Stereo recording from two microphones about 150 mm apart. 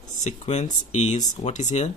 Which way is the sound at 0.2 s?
50° left (ahead or behind).